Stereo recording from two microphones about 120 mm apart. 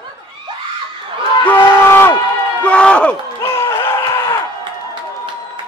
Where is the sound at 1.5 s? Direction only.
15° left (ahead or behind).